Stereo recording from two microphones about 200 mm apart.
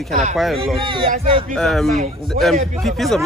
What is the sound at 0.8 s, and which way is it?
Speech, 25° right (ahead or behind).